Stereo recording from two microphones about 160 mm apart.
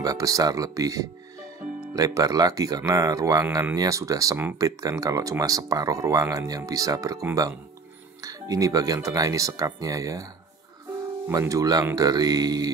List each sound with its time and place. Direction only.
0.0 s speech: 20° right (ahead or behind)
11.2 s speech: 20° right (ahead or behind)